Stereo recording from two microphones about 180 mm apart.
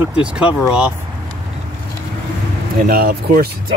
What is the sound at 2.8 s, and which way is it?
Speech, 55° right (ahead or behind).